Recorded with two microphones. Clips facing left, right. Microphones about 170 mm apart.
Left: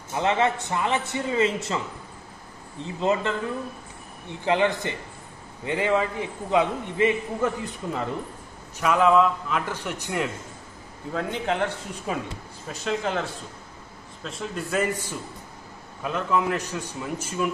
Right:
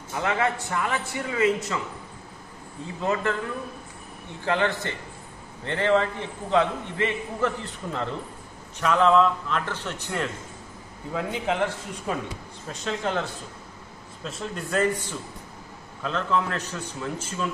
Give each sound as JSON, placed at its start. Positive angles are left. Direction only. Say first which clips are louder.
{"t": 0.1, "sound": "a man's voice", "louder": "left 3 dB", "side_deg": 20}
{"t": 3.0, "sound": "a man's voice", "louder": "left 2 dB", "side_deg": 20}
{"t": 4.5, "sound": "a man's voice", "louder": "left 2 dB", "side_deg": 15}
{"t": 11.1, "sound": "a man's voice", "louder": "even", "side_deg": -5}